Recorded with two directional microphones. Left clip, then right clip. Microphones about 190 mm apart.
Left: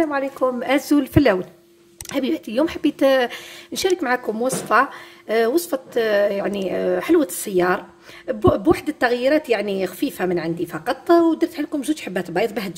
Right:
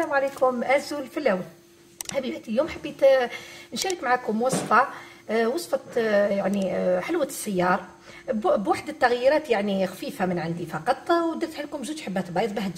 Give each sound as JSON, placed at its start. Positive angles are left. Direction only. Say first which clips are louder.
{"t": 0.0, "sound": "a woman's voice", "louder": "left 2 dB", "side_deg": 40}